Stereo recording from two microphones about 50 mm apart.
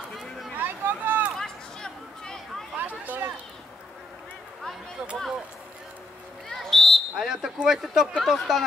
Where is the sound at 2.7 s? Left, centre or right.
Right.